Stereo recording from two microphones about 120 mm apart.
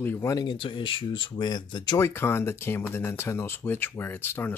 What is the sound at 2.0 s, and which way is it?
Speech, 20° left (ahead or behind).